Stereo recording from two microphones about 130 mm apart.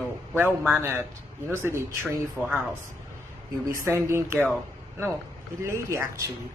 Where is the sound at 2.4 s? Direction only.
15° left (ahead or behind).